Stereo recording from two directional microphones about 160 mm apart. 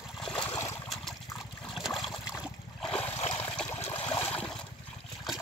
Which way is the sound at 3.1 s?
40° left (ahead or behind).